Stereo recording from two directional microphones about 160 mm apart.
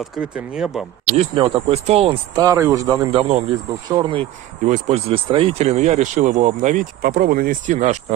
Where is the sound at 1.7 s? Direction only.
40° right (ahead or behind).